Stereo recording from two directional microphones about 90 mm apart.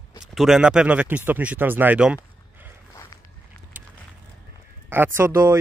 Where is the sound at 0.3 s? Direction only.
Centre (ahead or behind); by 2.0 s 20° right (ahead or behind).